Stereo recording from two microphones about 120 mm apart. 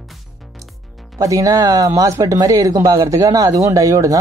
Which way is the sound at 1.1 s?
25° right (ahead or behind).